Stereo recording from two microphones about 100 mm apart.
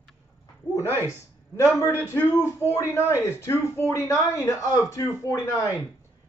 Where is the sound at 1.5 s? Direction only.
30° left (ahead or behind).